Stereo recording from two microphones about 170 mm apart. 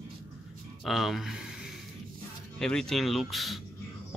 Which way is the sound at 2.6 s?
5° left (ahead or behind).